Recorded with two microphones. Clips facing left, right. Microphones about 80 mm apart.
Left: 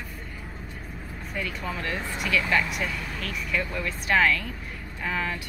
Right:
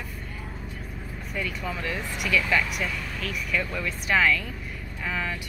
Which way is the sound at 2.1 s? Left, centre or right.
Left.